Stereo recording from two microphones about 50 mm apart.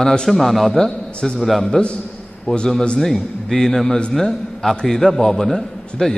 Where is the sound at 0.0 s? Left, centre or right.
Centre.